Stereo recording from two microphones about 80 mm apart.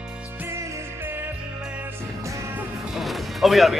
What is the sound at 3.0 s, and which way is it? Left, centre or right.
Music, centre.